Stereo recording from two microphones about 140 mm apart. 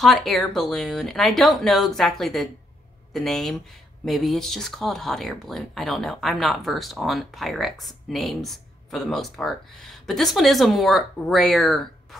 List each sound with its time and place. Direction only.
0.0 s speech: centre (ahead or behind)